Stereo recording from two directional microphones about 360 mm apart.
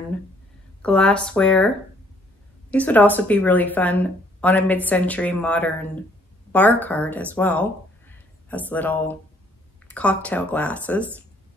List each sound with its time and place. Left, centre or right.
0.8 s speech: centre
2.7 s speech: centre